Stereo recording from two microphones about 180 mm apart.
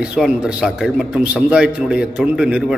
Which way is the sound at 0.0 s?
5° right (ahead or behind).